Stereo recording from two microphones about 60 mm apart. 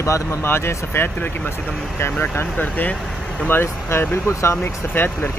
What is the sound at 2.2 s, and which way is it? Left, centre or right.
Speech, left.